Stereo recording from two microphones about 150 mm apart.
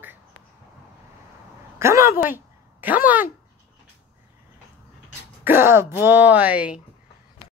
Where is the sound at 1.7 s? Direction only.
20° right (ahead or behind).